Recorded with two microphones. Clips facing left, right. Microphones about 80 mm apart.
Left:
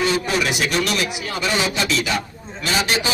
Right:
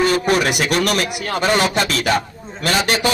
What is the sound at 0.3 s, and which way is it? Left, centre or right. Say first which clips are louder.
Speech: right 4 dB; right.